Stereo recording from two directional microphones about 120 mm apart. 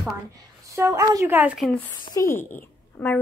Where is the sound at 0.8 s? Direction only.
25° right (ahead or behind).